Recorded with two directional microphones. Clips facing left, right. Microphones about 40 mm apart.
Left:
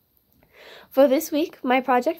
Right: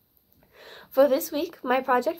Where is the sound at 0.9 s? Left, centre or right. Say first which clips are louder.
Left 3 dB; left.